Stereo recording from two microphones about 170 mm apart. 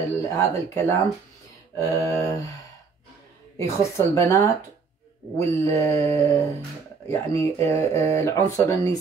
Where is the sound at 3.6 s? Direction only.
20° left (ahead or behind).